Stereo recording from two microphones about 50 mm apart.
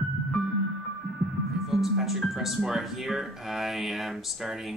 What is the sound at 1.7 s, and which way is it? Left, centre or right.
Speech, centre.